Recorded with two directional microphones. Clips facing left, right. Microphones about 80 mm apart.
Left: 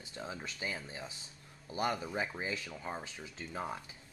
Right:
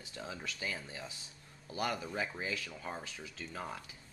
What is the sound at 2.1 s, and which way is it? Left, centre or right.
Speech, centre.